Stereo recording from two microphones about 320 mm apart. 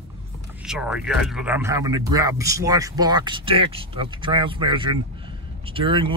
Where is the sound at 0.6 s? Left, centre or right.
Centre.